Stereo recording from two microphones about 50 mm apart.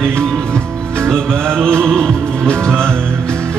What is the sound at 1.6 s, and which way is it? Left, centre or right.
Music, centre.